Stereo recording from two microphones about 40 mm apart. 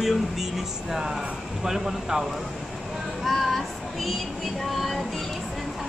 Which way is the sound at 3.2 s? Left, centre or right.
Centre.